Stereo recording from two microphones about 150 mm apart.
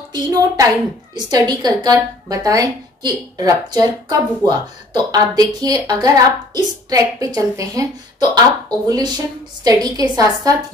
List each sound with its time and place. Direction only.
0.1 s a woman's voice: 25° right (ahead or behind)